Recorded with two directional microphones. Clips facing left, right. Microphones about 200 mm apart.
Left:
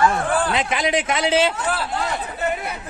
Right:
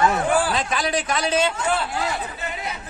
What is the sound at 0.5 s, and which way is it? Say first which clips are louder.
A man's voice: left 3 dB; 20° left (ahead or behind).